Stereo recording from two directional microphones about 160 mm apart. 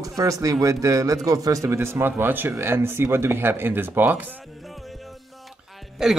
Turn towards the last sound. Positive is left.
turn(degrees=0)  # may be behind; listen again after turning